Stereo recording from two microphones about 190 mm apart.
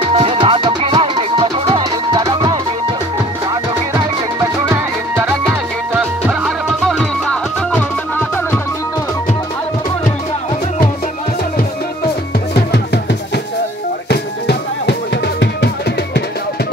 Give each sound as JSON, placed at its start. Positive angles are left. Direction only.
{"t": 0.1, "sound": "music", "side_deg": -30}
{"t": 5.5, "sound": "music", "side_deg": -5}
{"t": 7.2, "sound": "music", "side_deg": 10}
{"t": 12.5, "sound": "music", "side_deg": 60}
{"t": 14.0, "sound": "music", "side_deg": 60}